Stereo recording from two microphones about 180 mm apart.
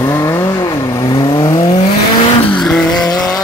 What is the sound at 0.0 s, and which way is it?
Vehicle, 15° left (ahead or behind).